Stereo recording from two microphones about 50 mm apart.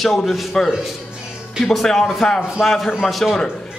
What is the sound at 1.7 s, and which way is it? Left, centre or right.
A man's voice, centre.